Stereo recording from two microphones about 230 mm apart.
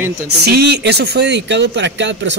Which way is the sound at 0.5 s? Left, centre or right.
Right.